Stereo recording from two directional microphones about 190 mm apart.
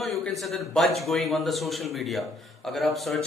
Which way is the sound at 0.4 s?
Centre (ahead or behind).